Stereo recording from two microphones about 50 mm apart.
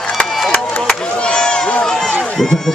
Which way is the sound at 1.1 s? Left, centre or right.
Centre.